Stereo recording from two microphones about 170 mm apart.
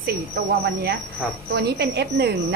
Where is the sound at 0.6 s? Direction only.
75° right (ahead or behind).